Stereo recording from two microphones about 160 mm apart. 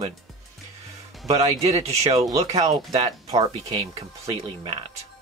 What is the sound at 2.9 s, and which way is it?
Speech, 25° right (ahead or behind).